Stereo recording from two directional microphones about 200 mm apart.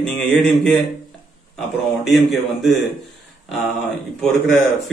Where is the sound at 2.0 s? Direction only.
Centre (ahead or behind).